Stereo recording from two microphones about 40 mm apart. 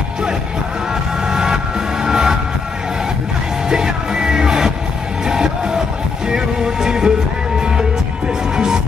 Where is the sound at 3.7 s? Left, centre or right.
Centre.